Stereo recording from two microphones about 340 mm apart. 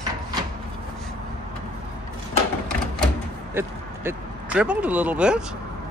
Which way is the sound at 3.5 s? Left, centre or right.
Centre.